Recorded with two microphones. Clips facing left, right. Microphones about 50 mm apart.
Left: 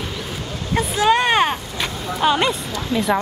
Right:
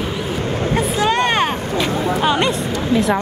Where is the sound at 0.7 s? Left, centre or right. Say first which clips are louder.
Left 2 dB; centre.